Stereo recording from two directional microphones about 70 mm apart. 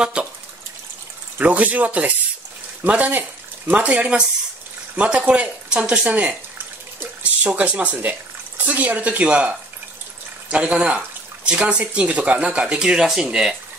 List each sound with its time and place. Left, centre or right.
0.0 s speech: centre
1.4 s speech: right